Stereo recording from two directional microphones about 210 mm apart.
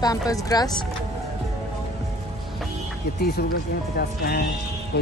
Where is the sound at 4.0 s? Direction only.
50° left (ahead or behind).